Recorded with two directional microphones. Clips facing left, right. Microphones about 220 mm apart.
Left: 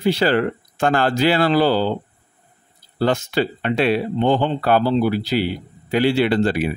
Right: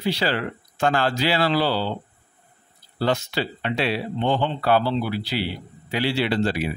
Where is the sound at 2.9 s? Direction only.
50° left (ahead or behind).